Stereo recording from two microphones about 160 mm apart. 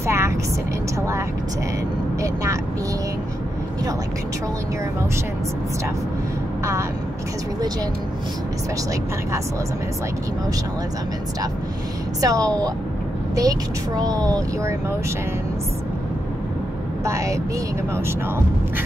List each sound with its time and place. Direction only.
0.0 s vehicle: 15° right (ahead or behind)
2.2 s vehicle: 20° right (ahead or behind)
6.6 s speech: 20° right (ahead or behind)
12.2 s speech: 20° right (ahead or behind)
17.0 s speech: 20° right (ahead or behind)